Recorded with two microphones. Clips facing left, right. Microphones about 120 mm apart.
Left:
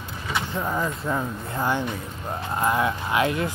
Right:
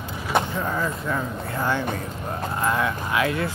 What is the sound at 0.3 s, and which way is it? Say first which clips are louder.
Vehicle: right 7 dB; 55° right (ahead or behind).